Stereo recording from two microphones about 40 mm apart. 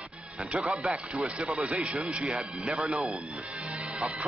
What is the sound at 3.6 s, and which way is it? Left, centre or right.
Music, right.